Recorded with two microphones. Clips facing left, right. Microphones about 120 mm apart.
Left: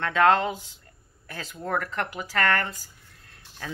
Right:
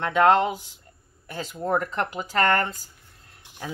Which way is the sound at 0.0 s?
15° right (ahead or behind).